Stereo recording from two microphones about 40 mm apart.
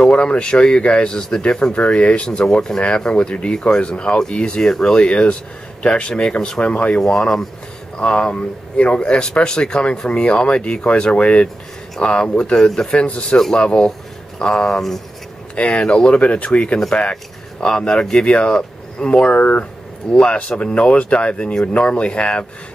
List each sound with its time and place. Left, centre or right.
0.0 s speech: left
7.0 s speech: centre
8.0 s speech: left
13.0 s speech: left
14.4 s speech: centre
15.5 s speech: left
20.1 s speech: left